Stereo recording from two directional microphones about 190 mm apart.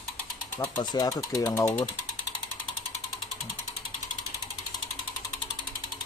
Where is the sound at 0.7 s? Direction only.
20° left (ahead or behind).